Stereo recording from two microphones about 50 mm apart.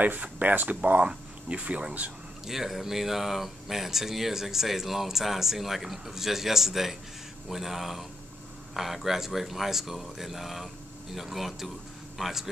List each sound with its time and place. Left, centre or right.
0.0 s speech: right
2.4 s speech: centre